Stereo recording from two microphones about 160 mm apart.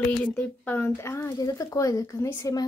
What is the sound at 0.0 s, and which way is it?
Speech, 10° left (ahead or behind).